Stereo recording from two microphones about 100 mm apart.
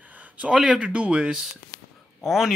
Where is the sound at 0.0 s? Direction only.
15° right (ahead or behind).